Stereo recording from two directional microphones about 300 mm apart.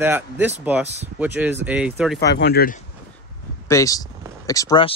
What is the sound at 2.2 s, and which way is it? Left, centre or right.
Speech, left.